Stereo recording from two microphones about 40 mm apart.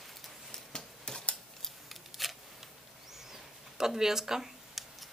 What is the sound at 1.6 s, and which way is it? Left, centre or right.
Scissors, centre.